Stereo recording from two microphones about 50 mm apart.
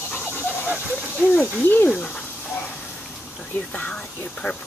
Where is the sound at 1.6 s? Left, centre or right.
Left.